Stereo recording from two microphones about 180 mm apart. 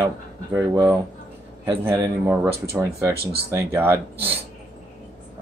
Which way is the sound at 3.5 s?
15° right (ahead or behind).